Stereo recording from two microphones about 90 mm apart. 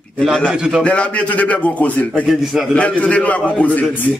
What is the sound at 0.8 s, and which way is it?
A man's voice, 15° left (ahead or behind).